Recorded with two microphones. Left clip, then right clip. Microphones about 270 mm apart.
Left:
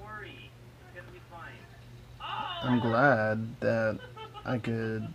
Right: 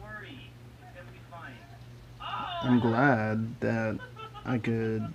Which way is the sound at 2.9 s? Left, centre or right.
Centre.